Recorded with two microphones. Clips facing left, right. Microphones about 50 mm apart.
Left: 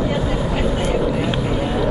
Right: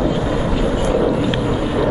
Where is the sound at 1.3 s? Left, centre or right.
Centre.